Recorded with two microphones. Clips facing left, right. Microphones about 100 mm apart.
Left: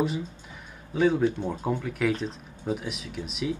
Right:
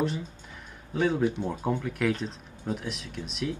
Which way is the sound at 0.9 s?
Centre (ahead or behind).